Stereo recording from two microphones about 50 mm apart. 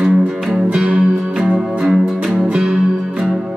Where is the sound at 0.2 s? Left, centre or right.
Centre.